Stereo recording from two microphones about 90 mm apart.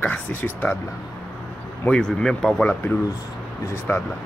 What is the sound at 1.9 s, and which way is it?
Speech, 10° left (ahead or behind).